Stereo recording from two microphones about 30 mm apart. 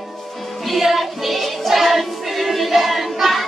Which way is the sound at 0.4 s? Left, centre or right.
Centre.